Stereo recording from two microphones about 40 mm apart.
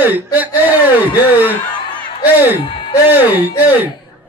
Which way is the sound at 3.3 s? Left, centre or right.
Right.